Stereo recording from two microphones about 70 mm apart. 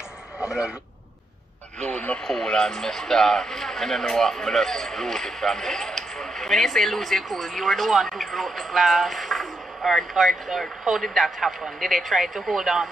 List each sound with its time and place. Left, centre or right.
0.4 s radio: centre
1.8 s speech: left
2.2 s speech: centre